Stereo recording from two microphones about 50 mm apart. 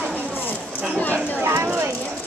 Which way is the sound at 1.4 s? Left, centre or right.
Right.